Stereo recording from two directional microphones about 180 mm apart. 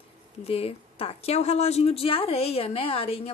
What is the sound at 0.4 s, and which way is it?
A woman's voice, 35° left (ahead or behind).